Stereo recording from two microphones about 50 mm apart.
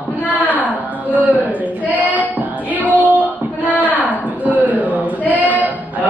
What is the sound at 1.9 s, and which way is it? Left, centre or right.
Child singing, right.